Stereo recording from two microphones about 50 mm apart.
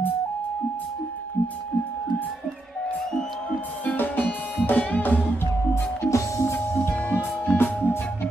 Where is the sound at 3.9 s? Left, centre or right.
Left.